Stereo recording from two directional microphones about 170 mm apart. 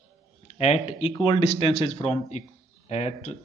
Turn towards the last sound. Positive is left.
turn(degrees=40)  # may be behind; listen again after turning